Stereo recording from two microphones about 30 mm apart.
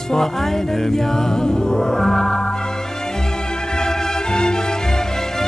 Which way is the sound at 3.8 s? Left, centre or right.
Left.